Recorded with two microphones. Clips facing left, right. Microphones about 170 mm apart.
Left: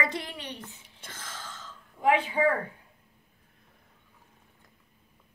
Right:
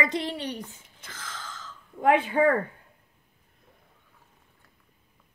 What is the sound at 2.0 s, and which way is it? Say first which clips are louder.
Speech: right 3 dB; 55° right (ahead or behind).